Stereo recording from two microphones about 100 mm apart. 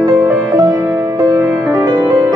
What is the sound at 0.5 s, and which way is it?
Music, 35° right (ahead or behind).